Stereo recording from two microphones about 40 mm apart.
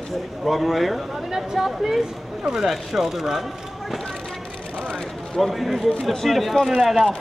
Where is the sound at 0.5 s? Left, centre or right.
Centre.